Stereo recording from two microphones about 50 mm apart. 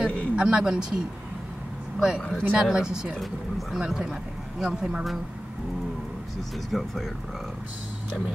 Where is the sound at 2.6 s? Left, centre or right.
Centre.